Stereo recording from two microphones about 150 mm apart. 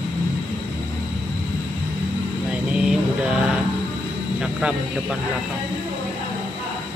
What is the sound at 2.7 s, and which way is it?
Music, 5° right (ahead or behind).